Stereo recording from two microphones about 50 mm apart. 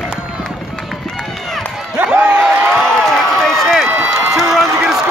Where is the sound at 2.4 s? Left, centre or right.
Centre.